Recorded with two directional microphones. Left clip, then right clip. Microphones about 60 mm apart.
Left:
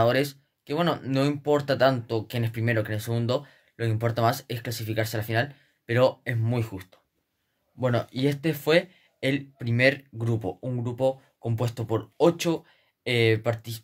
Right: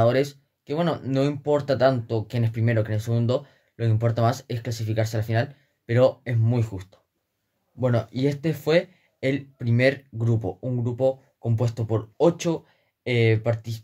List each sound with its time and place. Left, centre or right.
0.0 s speech: right
7.8 s speech: centre
9.7 s speech: right; by 13.7 s centre